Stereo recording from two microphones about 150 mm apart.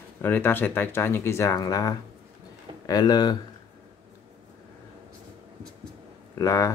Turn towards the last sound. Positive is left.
turn(degrees=20)  # may be behind; listen again after turning